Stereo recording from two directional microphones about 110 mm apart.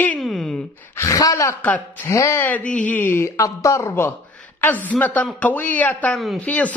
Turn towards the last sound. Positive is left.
turn(degrees=15)  # may be behind; listen again after turning